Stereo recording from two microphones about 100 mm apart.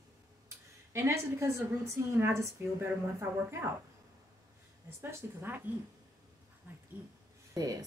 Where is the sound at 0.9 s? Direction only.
30° right (ahead or behind).